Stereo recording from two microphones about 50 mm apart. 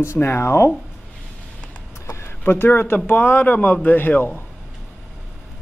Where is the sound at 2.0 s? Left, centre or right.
Left.